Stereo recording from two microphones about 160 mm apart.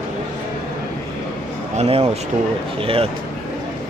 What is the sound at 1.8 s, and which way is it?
Speech, 40° right (ahead or behind).